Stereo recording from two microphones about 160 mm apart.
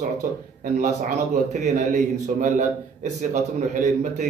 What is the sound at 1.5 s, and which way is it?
A man's voice, 45° right (ahead or behind).